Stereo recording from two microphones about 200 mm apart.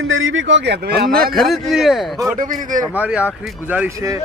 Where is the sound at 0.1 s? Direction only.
80° right; by 1.3 s 50° right (ahead or behind).